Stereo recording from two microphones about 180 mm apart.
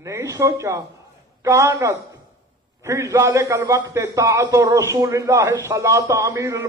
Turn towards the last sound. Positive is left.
turn(degrees=-15)  # may be behind; listen again after turning